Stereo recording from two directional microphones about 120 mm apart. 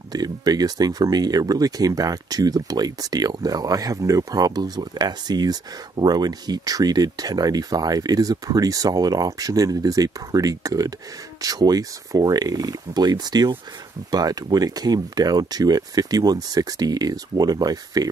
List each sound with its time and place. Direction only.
0.1 s speech: 35° right (ahead or behind)